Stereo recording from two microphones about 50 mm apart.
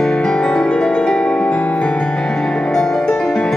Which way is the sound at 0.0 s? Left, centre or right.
Centre.